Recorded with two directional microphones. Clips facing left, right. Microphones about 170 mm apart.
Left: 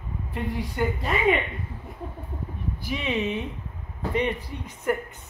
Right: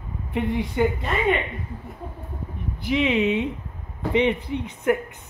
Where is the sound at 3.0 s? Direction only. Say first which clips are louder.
Right 7 dB; 15° right (ahead or behind).